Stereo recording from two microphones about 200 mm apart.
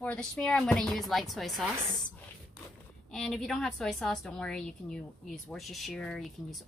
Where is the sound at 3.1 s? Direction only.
Centre (ahead or behind).